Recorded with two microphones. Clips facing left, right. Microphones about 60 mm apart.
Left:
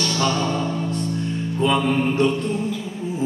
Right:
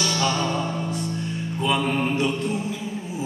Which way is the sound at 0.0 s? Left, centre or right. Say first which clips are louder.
Left 2 dB; centre.